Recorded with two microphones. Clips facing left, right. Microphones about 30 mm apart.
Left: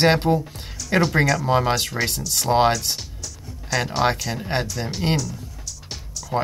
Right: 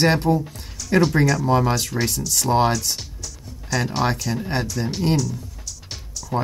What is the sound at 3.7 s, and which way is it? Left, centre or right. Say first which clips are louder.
Speech: left 1 dB; centre.